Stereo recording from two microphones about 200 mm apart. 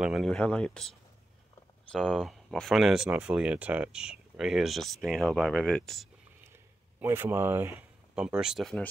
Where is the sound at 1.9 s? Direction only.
5° left (ahead or behind).